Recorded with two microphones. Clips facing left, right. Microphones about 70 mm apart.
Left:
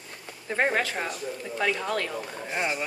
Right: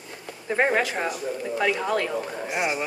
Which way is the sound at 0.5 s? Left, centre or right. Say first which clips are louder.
Right 3 dB; right.